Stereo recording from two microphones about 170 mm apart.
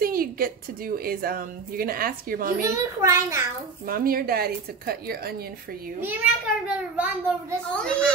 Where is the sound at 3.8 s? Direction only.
60° right (ahead or behind).